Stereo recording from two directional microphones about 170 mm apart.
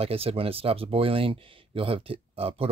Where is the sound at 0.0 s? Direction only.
35° right (ahead or behind).